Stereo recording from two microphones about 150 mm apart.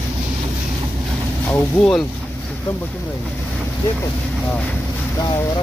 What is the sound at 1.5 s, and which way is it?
Speech, 5° left (ahead or behind).